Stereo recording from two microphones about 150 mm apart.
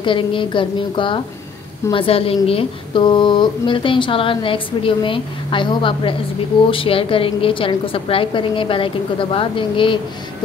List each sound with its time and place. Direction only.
0.0 s a woman's voice: 35° left (ahead or behind)